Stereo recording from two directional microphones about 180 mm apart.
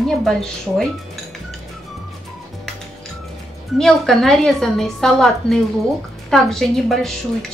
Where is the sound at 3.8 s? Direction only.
Centre (ahead or behind).